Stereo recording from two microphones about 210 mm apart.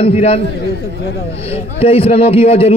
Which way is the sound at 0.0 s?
30° left (ahead or behind).